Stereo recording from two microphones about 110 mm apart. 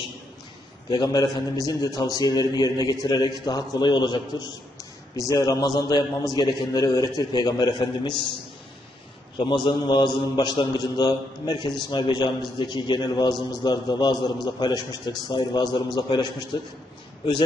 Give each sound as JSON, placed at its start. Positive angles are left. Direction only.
{"t": 0.8, "sound": "a man's voice", "side_deg": 40}
{"t": 9.4, "sound": "a man's voice", "side_deg": 45}